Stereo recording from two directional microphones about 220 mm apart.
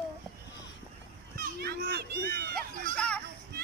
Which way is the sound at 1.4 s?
45° right (ahead or behind).